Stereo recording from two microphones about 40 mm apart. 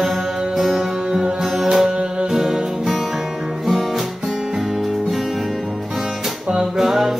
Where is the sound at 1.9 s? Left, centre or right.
Right.